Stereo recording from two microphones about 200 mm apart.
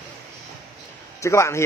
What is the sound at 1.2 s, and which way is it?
Speech, 15° left (ahead or behind).